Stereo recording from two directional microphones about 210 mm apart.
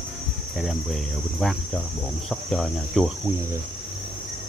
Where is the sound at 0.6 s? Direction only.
Centre (ahead or behind).